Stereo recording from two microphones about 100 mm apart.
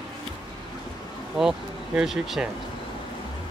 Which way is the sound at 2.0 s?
5° right (ahead or behind).